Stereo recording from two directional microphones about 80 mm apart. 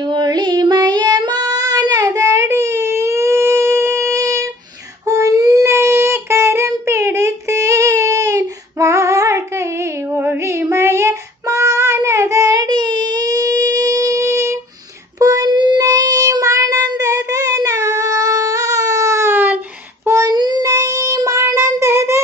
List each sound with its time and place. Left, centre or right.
0.0 s child singing: right
10.1 s child singing: right
12.6 s a sound: right
15.1 s child singing: right
15.5 s child singing: right
15.8 s child singing: right
19.3 s a sound: right
20.2 s child singing: right
20.6 s child singing: right